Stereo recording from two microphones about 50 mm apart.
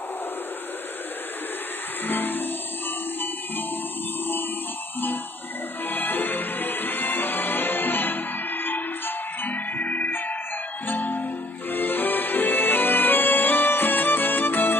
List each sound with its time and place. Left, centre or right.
2.0 s music: left
5.9 s music: left